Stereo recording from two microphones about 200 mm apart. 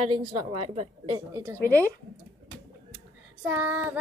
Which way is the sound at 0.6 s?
30° right (ahead or behind).